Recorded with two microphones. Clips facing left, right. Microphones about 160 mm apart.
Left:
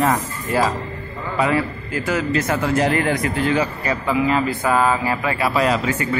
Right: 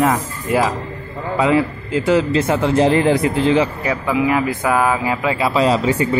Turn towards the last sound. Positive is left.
turn(degrees=-30)  # may be behind; listen again after turning